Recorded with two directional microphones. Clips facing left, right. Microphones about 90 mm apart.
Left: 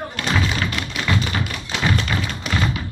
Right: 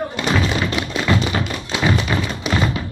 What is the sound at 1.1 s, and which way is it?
Tap, 20° right (ahead or behind).